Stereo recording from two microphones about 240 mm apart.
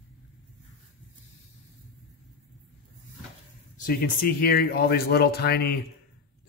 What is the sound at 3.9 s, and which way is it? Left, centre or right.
Speech, left.